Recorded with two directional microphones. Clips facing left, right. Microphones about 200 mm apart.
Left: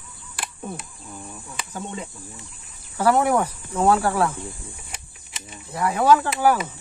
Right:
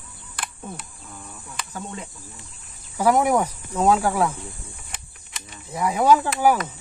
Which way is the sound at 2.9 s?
10° right (ahead or behind).